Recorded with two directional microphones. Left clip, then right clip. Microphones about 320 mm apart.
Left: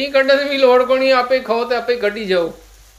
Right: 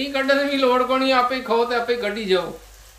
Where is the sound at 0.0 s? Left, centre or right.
Centre.